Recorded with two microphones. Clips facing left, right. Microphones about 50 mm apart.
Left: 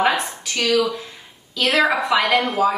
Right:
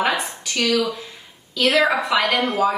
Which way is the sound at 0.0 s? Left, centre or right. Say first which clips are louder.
Left 2 dB; centre.